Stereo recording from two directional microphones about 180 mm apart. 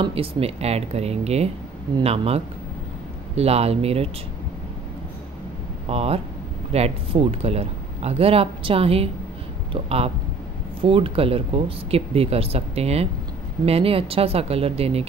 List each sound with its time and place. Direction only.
0.0 s speech: 30° right (ahead or behind)
5.9 s speech: 35° right (ahead or behind)